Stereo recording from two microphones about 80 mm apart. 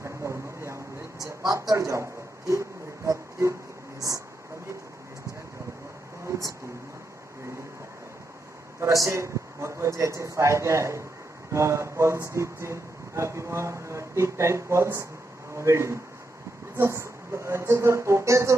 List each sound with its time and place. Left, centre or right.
0.0 s a sound: right
3.1 s speech: right
8.7 s a man's voice: right